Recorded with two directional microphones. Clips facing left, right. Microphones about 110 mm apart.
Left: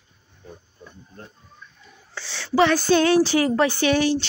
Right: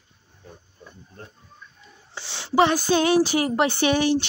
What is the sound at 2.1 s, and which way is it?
Speech, 20° right (ahead or behind).